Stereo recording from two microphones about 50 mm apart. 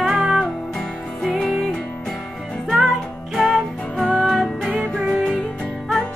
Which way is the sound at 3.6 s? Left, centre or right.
Centre.